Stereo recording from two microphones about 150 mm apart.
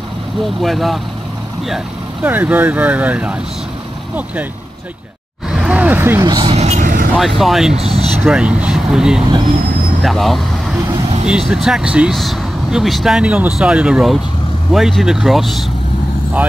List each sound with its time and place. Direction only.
0.6 s speech: centre (ahead or behind)
2.2 s speech: 10° right (ahead or behind)
5.5 s a sound: 5° right (ahead or behind)
6.4 s vehicle: 45° right (ahead or behind)
7.2 s speech: centre (ahead or behind)
7.7 s speech: 40° right (ahead or behind)
8.2 s speech: 5° right (ahead or behind)